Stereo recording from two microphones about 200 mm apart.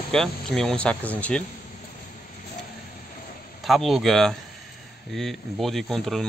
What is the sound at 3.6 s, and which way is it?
Speech, centre (ahead or behind).